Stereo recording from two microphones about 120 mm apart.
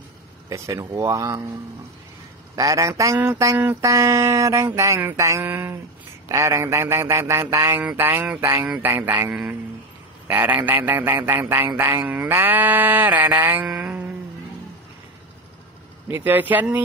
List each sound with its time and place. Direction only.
0.5 s mantra: 25° right (ahead or behind)
2.5 s mantra: 25° right (ahead or behind)
7.8 s a man's voice: 15° right (ahead or behind)
16.1 s a man's voice: 15° right (ahead or behind)